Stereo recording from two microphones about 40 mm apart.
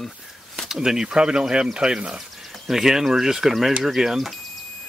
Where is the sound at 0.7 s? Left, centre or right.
Centre.